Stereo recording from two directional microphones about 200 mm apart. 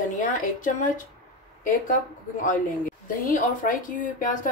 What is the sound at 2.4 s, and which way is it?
Speech, 40° left (ahead or behind).